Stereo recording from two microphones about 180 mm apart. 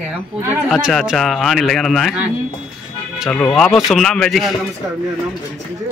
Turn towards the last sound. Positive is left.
turn(degrees=0)  # may be behind; listen again after turning